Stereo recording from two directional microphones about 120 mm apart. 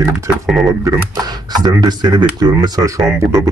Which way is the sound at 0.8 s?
35° right (ahead or behind).